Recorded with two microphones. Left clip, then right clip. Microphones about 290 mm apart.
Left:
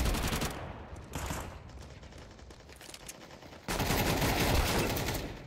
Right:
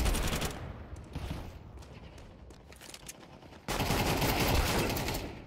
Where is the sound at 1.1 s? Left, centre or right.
Left.